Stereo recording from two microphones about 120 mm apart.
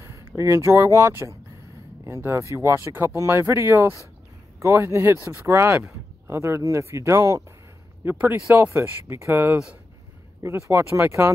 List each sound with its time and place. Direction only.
0.0 s speech: 25° right (ahead or behind)
2.5 s speech: 25° right (ahead or behind)
8.0 s speech: 15° right (ahead or behind)